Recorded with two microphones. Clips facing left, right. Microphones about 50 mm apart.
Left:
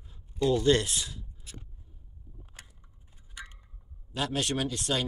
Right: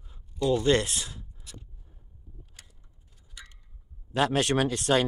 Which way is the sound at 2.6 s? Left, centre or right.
Left.